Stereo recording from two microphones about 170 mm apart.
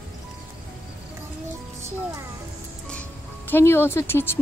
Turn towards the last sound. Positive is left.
turn(degrees=15)  # may be behind; listen again after turning